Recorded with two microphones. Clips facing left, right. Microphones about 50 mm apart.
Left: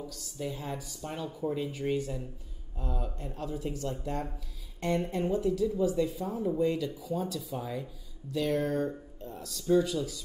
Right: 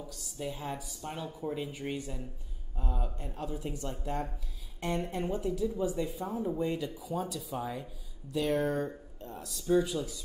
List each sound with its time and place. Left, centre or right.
0.1 s speech: centre
1.6 s speech: centre
1.9 s speech: centre
6.2 s speech: centre
6.6 s speech: right
7.0 s speech: centre